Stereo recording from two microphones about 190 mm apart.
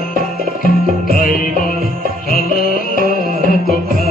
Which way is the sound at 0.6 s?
45° left (ahead or behind).